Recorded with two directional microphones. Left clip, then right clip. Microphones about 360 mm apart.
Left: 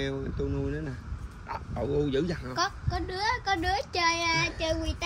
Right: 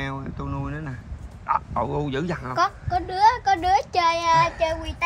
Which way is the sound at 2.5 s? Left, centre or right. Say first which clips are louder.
Right 9 dB; right.